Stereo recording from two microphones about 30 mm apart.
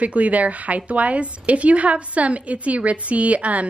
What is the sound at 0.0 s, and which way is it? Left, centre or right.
Speech, right.